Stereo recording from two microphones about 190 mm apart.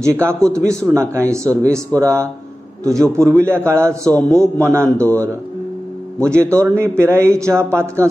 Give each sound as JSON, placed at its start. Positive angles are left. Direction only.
{"t": 0.0, "sound": "a man's voice", "side_deg": -15}